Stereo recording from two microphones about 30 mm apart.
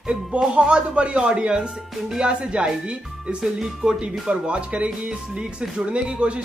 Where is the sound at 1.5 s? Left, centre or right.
Right.